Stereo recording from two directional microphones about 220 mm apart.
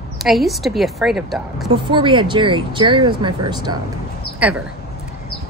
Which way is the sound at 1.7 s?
25° right (ahead or behind).